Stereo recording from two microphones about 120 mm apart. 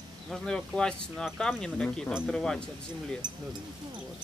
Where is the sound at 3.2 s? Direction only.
40° right (ahead or behind).